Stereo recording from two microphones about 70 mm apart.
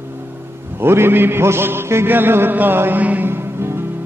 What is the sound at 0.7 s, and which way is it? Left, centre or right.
Mantra, right.